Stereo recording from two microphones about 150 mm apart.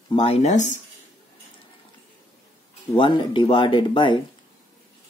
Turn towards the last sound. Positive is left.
turn(degrees=35)  # may be behind; listen again after turning